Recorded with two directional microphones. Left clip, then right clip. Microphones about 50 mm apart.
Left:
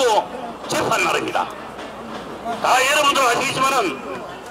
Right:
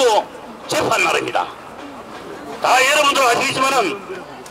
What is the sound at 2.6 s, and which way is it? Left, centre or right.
A man's voice, centre.